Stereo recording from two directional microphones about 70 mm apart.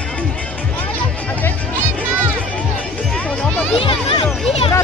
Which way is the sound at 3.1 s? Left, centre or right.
Centre.